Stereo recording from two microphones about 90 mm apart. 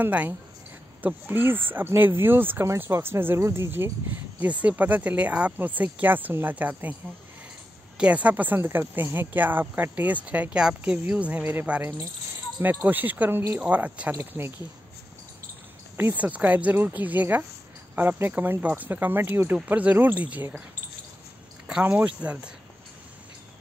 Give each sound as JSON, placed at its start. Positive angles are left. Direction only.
{"t": 0.0, "sound": "speech", "side_deg": -15}
{"t": 8.0, "sound": "speech", "side_deg": -15}
{"t": 16.0, "sound": "speech", "side_deg": -20}
{"t": 21.8, "sound": "speech", "side_deg": -15}